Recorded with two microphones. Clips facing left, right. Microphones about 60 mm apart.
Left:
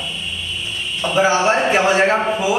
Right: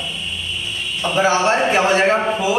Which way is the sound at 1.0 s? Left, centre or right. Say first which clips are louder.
Left 1 dB; centre.